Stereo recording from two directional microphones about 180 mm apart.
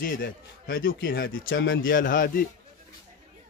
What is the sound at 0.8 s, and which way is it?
Speech, 90° left.